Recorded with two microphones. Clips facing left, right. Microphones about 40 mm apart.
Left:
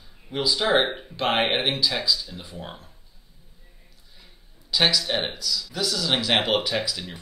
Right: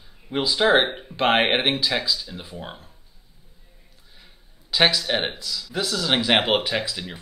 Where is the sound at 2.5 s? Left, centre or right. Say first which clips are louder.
Even; centre.